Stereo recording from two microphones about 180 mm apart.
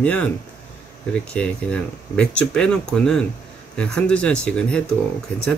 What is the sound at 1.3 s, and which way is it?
Speech, 5° left (ahead or behind).